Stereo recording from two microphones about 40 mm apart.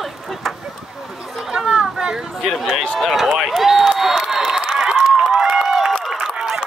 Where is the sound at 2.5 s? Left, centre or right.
Centre.